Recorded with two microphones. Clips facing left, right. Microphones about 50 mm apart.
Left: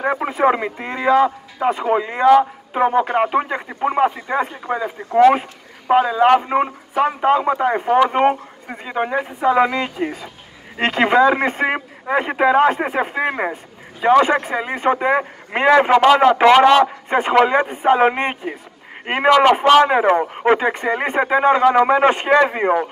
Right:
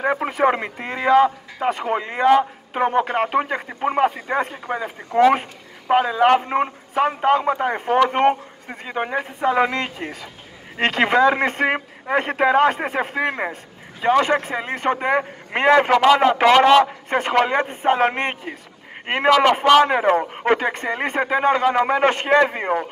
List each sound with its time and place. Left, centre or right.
0.0 s speech: centre
3.3 s speech: centre
6.4 s speech: centre